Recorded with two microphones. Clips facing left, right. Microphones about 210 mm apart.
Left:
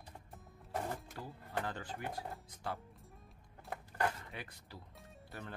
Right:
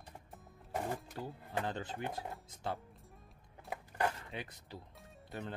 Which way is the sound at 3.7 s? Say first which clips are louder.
Right 1 dB; 20° right (ahead or behind).